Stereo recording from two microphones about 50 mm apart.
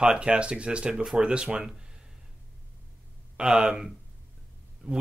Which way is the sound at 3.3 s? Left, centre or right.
Centre.